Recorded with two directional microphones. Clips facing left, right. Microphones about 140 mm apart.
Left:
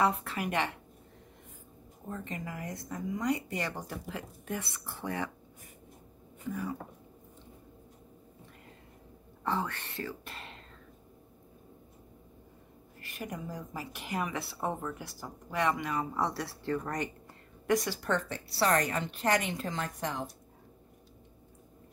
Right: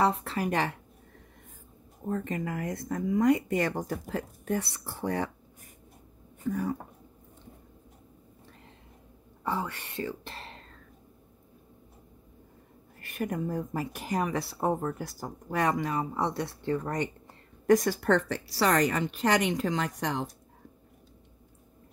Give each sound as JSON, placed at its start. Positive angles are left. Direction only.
{"t": 0.0, "sound": "speech", "side_deg": -30}
{"t": 2.0, "sound": "speech", "side_deg": -50}
{"t": 6.4, "sound": "speech", "side_deg": -45}
{"t": 9.4, "sound": "speech", "side_deg": -10}
{"t": 13.0, "sound": "speech", "side_deg": -50}
{"t": 15.9, "sound": "speech", "side_deg": -25}
{"t": 17.6, "sound": "a woman's voice", "side_deg": -45}
{"t": 18.0, "sound": "a woman's voice", "side_deg": -75}